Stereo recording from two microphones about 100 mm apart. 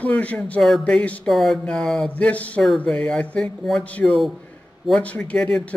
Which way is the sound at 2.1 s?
15° left (ahead or behind).